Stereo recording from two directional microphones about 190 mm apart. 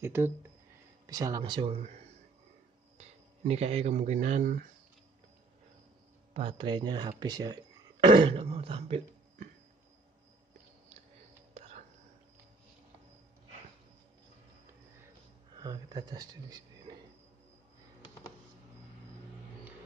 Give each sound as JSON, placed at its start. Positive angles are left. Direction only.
{"t": 0.0, "sound": "speech", "side_deg": -15}
{"t": 3.0, "sound": "speech", "side_deg": -30}
{"t": 6.3, "sound": "speech", "side_deg": -30}
{"t": 15.5, "sound": "speech", "side_deg": -20}